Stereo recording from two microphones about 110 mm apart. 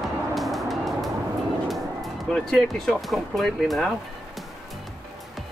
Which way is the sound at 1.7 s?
Centre (ahead or behind).